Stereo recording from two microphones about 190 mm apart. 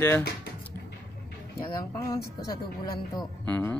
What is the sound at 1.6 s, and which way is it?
Speech, 20° left (ahead or behind).